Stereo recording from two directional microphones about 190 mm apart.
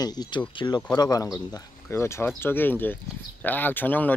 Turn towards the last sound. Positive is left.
turn(degrees=10)  # may be behind; listen again after turning